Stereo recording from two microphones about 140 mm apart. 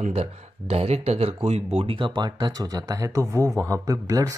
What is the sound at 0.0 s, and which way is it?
Speech, 50° right (ahead or behind).